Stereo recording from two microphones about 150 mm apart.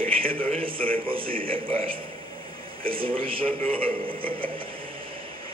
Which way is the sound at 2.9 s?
35° right (ahead or behind).